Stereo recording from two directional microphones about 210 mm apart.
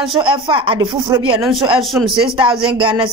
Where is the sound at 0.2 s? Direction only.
25° right (ahead or behind).